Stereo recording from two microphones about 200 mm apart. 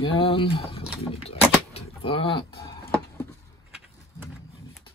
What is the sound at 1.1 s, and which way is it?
Keys jangling, 30° left (ahead or behind).